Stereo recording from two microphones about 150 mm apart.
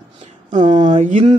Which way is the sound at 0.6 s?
30° right (ahead or behind).